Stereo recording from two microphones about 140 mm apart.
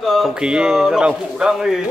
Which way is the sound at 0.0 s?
Centre (ahead or behind).